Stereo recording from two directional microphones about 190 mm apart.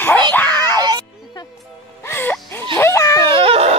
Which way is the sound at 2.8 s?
15° left (ahead or behind).